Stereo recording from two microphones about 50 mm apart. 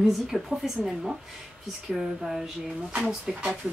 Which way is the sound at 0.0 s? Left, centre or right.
Centre.